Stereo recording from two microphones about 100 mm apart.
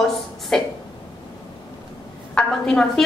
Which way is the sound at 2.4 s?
5° left (ahead or behind).